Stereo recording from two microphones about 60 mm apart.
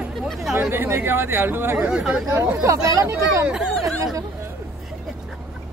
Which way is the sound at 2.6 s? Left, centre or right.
Right.